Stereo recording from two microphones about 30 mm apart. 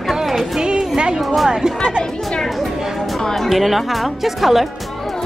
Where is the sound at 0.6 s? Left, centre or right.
Right.